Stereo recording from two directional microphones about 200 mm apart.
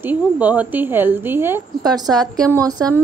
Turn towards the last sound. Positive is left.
turn(degrees=-20)  # may be behind; listen again after turning